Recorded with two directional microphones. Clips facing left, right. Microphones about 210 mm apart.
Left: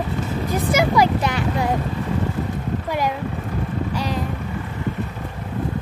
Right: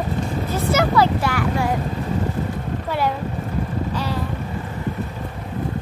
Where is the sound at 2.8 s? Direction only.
15° left (ahead or behind).